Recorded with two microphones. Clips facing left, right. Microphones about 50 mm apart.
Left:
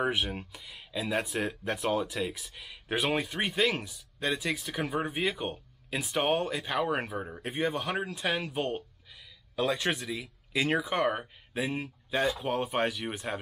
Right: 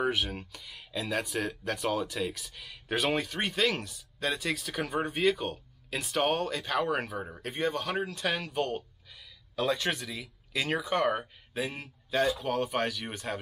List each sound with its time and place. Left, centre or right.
0.0 s speech: centre